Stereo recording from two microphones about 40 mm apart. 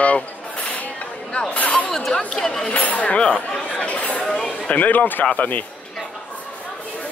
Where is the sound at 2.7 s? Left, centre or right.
Left.